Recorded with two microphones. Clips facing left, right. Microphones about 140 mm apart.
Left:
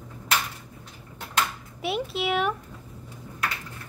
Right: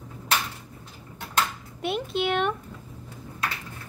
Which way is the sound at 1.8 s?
5° left (ahead or behind).